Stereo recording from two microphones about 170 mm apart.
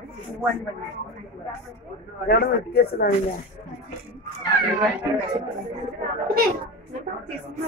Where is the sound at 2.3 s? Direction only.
65° left (ahead or behind).